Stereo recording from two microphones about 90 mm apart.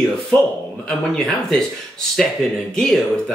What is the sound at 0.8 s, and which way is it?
Speech, 5° left (ahead or behind).